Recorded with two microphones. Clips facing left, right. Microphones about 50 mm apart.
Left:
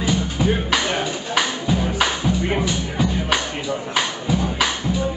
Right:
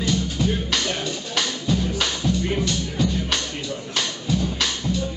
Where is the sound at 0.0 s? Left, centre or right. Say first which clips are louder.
Left 2 dB; centre.